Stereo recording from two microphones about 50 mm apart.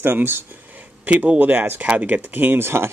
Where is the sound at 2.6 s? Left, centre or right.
Right.